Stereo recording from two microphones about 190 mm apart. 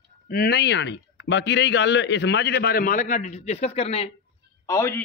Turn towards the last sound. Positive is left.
turn(degrees=15)  # may be behind; listen again after turning